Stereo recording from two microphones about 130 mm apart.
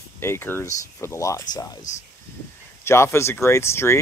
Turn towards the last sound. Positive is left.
turn(degrees=20)  # may be behind; listen again after turning